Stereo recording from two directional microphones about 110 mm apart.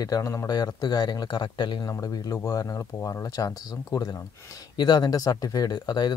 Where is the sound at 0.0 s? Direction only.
30° left (ahead or behind).